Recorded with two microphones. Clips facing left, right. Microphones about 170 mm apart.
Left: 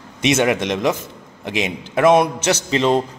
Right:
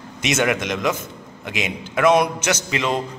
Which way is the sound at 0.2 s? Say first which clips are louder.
Left 4 dB; 30° left (ahead or behind).